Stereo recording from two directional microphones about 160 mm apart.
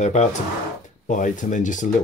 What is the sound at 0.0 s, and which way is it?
Speech, 45° left (ahead or behind).